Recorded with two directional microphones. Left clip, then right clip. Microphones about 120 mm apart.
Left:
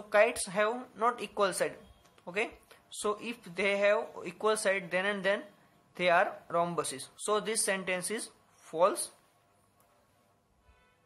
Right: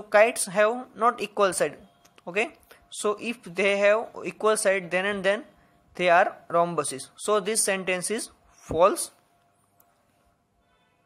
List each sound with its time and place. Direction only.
0.1 s speech: 40° right (ahead or behind)
0.7 s speech: 25° right (ahead or behind)
1.1 s speech: 40° right (ahead or behind)